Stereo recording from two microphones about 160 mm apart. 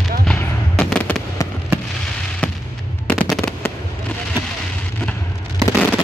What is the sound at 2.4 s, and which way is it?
Fireworks, 10° left (ahead or behind).